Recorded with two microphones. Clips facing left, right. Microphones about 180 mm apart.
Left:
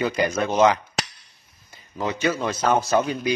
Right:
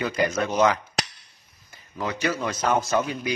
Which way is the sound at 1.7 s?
20° left (ahead or behind).